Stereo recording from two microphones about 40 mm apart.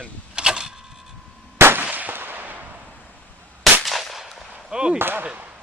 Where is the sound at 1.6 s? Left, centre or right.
Right.